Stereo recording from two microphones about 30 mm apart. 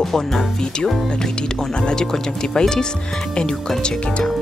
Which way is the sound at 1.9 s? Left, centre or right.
Centre.